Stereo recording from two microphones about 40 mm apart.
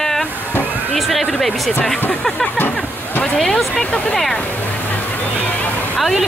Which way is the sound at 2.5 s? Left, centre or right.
Left.